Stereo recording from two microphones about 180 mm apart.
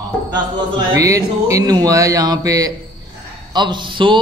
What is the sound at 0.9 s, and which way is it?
Speech, 15° right (ahead or behind).